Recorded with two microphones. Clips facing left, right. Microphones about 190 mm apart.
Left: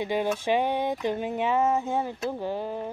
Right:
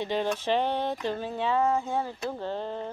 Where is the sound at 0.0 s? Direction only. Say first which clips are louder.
Left 2 dB; 10° left (ahead or behind).